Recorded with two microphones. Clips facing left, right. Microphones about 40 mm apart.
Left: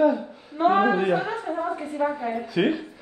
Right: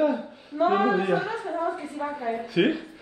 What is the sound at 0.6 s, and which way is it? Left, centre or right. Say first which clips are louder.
Speech: left 2 dB; left.